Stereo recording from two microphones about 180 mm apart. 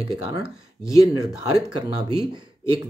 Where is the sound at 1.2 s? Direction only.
20° right (ahead or behind).